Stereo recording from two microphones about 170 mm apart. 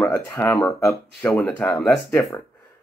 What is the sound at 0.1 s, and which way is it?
Speech, 15° left (ahead or behind).